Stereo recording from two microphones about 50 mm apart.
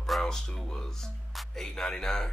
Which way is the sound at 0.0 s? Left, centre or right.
Centre.